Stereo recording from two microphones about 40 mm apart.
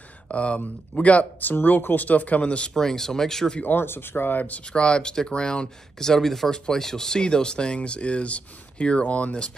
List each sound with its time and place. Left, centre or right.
0.3 s speech: left
1.4 s speech: left
2.7 s speech: centre
3.6 s speech: left
4.4 s speech: left
4.6 s speech: left